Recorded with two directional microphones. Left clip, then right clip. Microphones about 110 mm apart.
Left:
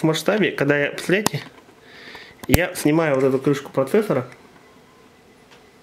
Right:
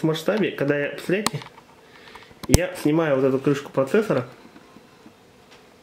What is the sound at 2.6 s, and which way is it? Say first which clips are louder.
Speech: left 4 dB; 45° left (ahead or behind).